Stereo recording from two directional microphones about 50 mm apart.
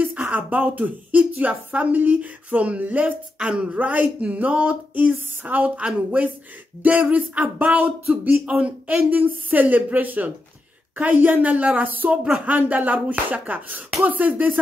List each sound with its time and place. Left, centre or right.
0.0 s a woman's voice: right
3.3 s a woman's voice: centre; by 8.4 s right
8.5 s speech: right
9.1 s a woman's voice: right